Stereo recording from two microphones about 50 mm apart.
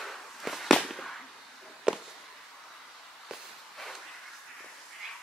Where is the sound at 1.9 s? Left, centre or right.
Centre.